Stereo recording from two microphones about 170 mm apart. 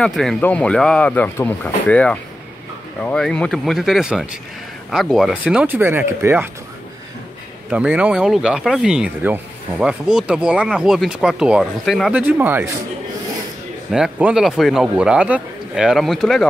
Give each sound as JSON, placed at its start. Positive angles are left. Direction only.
{"t": 0.0, "sound": "speech", "side_deg": 0}
{"t": 7.7, "sound": "speech", "side_deg": -10}
{"t": 13.9, "sound": "speech", "side_deg": -5}